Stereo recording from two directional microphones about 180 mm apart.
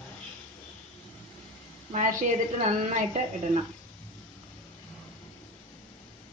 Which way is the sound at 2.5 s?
40° right (ahead or behind).